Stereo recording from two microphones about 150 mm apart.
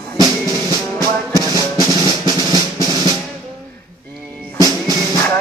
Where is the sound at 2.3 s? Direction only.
25° left (ahead or behind).